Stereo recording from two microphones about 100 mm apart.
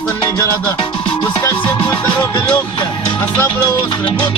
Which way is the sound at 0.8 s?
50° left (ahead or behind).